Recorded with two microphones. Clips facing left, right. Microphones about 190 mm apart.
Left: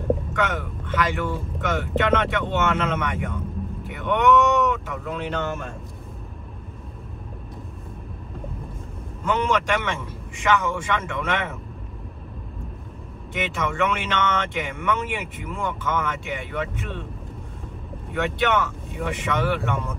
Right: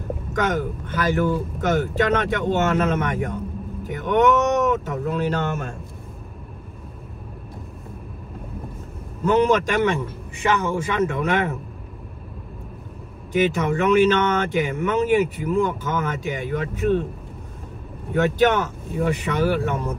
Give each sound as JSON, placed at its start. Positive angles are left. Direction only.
{"t": 0.3, "sound": "speech", "side_deg": -40}
{"t": 9.2, "sound": "speech", "side_deg": -35}
{"t": 13.3, "sound": "speech", "side_deg": -35}
{"t": 18.1, "sound": "speech", "side_deg": -35}